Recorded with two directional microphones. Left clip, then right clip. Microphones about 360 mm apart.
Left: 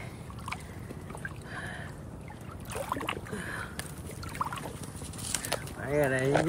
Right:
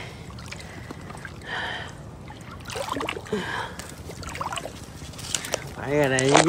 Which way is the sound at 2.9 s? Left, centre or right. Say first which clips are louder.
Right 6 dB; centre.